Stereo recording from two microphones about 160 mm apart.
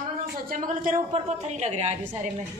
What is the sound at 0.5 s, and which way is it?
Speech, 55° right (ahead or behind).